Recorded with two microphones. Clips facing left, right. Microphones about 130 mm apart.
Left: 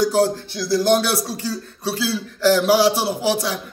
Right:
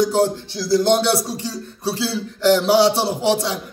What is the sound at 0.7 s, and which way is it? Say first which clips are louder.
Speech: right 1 dB; 25° right (ahead or behind).